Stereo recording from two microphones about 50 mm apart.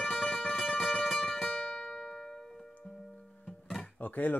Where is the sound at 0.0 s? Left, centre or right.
Centre.